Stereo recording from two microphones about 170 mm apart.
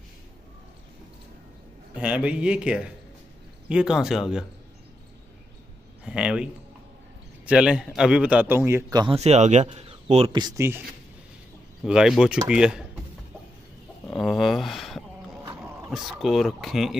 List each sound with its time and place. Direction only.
2.0 s speech: 5° right (ahead or behind)
6.0 s a man's voice: 5° right (ahead or behind)
9.0 s speech: 35° right (ahead or behind)
10.3 s speech: 20° right (ahead or behind)
11.8 s speech: centre (ahead or behind)
14.0 s a sound: centre (ahead or behind)
15.9 s speech: centre (ahead or behind)